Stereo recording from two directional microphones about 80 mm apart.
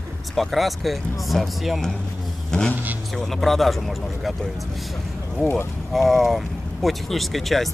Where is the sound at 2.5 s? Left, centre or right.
Centre.